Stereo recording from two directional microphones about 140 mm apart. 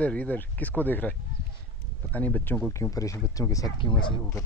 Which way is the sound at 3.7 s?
35° left (ahead or behind).